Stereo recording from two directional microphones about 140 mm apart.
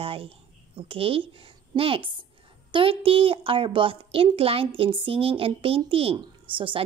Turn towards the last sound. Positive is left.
turn(degrees=-35)  # may be behind; listen again after turning